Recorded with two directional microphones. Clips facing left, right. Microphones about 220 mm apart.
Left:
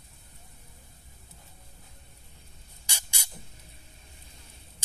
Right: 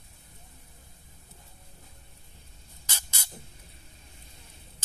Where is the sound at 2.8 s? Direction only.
15° left (ahead or behind).